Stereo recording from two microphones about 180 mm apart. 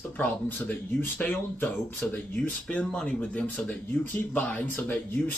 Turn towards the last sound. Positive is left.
turn(degrees=10)  # may be behind; listen again after turning